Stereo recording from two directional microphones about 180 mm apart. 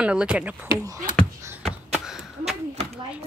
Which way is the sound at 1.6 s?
5° right (ahead or behind).